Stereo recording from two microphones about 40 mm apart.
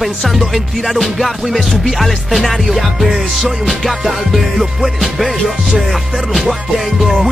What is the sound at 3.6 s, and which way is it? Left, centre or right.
Music, centre.